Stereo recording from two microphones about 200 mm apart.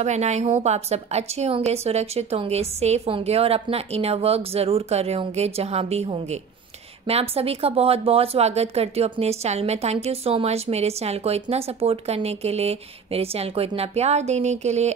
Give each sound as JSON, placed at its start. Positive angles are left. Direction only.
{"t": 0.0, "sound": "a woman's voice", "side_deg": -35}